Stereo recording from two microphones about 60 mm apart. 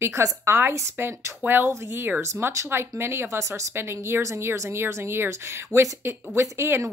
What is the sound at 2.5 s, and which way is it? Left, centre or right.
A woman's voice, right.